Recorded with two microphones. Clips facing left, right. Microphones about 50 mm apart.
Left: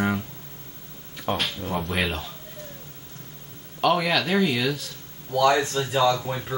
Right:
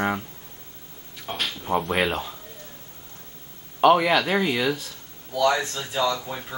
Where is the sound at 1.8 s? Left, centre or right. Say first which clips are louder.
Right 2 dB; centre.